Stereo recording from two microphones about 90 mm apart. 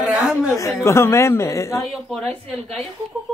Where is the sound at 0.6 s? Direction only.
35° left (ahead or behind).